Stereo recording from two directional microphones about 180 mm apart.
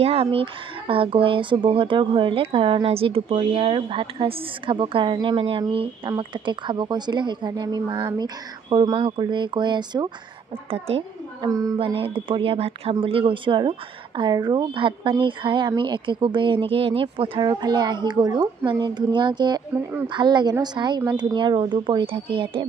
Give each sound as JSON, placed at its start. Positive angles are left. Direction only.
{"t": 0.0, "sound": "a woman's voice", "side_deg": -30}